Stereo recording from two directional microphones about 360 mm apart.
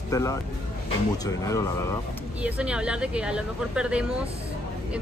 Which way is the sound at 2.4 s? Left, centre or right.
Centre.